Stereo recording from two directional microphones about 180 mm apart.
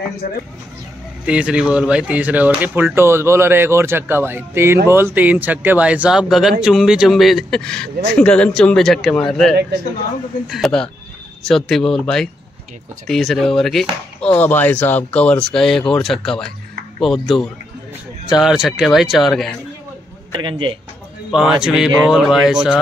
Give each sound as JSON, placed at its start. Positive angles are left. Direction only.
{"t": 1.2, "sound": "speech", "side_deg": -5}
{"t": 20.3, "sound": "a man's voice", "side_deg": -25}
{"t": 21.3, "sound": "speech", "side_deg": -5}